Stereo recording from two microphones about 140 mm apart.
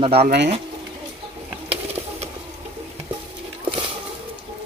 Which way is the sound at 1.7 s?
45° right (ahead or behind).